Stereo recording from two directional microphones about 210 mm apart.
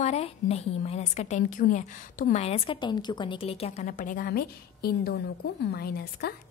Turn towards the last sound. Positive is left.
turn(degrees=50)  # may be behind; listen again after turning